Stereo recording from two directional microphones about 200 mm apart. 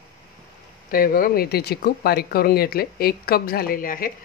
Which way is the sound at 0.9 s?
45° left (ahead or behind).